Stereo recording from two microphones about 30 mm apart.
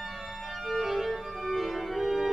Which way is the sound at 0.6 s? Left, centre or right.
Centre.